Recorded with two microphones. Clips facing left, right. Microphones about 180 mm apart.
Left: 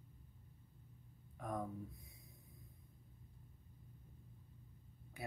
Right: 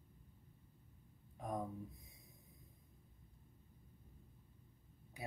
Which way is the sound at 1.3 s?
20° right (ahead or behind).